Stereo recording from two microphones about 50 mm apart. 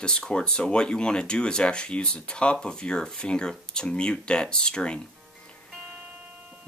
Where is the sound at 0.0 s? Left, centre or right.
Centre.